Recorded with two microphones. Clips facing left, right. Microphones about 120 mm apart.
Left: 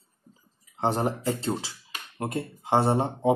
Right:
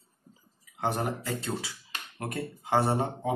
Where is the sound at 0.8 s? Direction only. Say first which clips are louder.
Left 4 dB; 30° left (ahead or behind).